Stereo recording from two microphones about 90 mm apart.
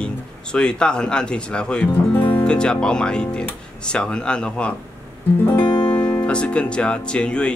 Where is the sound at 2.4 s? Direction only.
10° left (ahead or behind).